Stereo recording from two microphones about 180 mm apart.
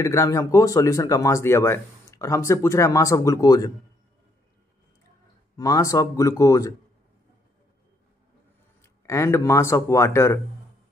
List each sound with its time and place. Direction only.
0.0 s speech: 15° left (ahead or behind)
5.6 s speech: 20° left (ahead or behind)
8.8 s speech: 15° left (ahead or behind)